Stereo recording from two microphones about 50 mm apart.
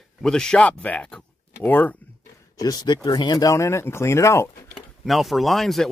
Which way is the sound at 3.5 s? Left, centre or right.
Left.